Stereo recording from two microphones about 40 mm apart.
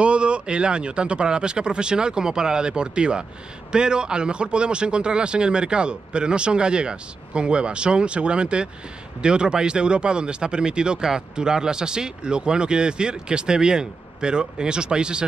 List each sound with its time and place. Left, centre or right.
0.0 s speech: right